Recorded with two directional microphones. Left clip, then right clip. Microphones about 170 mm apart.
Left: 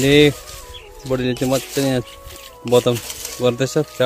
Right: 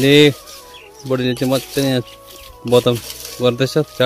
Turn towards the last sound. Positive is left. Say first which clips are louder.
# right 2 dB
turn(degrees=-5)  # may be behind; listen again after turning